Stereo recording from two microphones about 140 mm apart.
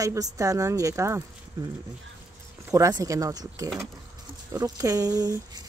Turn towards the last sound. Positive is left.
turn(degrees=-25)  # may be behind; listen again after turning